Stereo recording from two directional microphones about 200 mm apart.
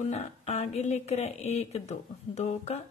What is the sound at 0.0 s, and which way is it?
A woman's voice, 35° left (ahead or behind).